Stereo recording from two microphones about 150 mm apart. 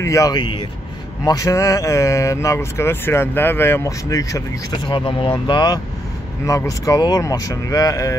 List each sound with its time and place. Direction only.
0.0 s speech: 20° left (ahead or behind)